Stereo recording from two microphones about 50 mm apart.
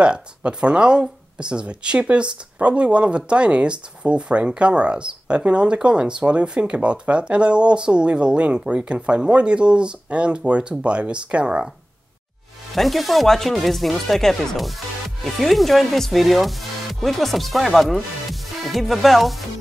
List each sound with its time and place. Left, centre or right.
0.0 s speech: right
12.7 s speech: centre